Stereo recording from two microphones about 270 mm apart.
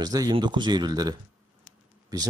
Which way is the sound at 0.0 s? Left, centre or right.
Centre.